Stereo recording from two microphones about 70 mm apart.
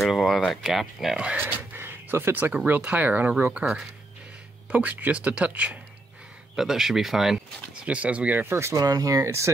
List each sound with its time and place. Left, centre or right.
0.0 s speech: centre
1.4 s speech: right
4.6 s speech: right
6.5 s speech: centre
7.7 s speech: centre
8.7 s speech: right